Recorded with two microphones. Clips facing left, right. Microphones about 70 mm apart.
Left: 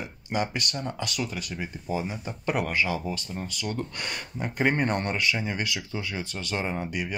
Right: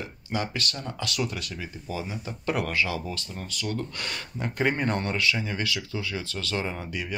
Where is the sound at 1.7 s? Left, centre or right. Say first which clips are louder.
Left 4 dB; left.